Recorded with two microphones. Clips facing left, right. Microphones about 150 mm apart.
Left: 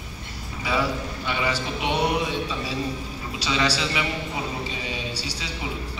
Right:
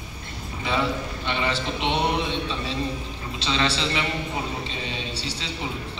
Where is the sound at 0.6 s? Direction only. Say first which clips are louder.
Even; 25° right (ahead or behind).